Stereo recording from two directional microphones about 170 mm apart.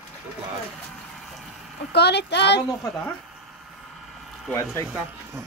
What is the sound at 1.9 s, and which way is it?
Speech, 75° left (ahead or behind).